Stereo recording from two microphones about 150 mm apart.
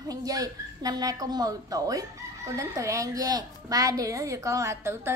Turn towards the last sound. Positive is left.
turn(degrees=-15)  # may be behind; listen again after turning